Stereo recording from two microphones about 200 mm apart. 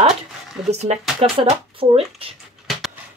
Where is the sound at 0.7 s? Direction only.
35° right (ahead or behind).